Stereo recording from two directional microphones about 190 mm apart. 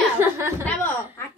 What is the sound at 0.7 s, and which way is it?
Speech, 5° left (ahead or behind).